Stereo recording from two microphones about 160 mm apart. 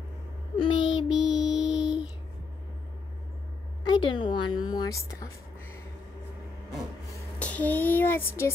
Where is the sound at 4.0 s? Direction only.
30° left (ahead or behind).